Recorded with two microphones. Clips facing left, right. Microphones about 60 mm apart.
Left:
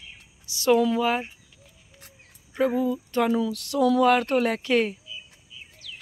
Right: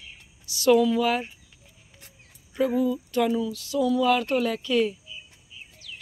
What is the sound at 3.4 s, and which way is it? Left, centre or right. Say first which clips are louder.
Speech: left 2 dB; left.